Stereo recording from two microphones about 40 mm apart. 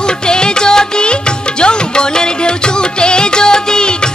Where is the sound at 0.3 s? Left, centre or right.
Left.